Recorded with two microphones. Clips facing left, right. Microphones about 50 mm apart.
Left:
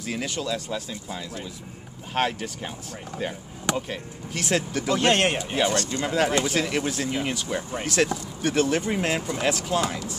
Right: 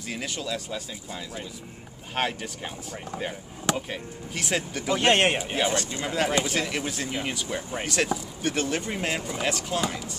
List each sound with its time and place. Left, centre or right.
0.0 s speech: centre
6.0 s speech: centre